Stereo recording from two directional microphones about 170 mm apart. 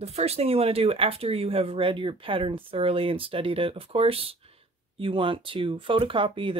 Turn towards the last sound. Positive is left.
turn(degrees=-30)  # may be behind; listen again after turning